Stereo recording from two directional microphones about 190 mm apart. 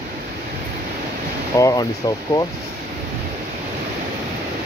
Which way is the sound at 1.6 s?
20° left (ahead or behind).